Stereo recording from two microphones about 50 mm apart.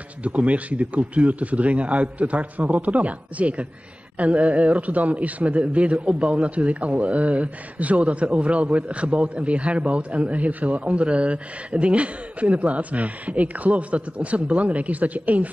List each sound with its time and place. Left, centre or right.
0.2 s speech: right